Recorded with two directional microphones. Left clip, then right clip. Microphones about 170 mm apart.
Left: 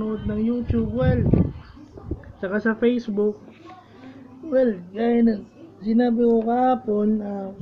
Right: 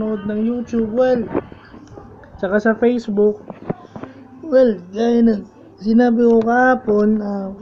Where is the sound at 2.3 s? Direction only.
10° right (ahead or behind).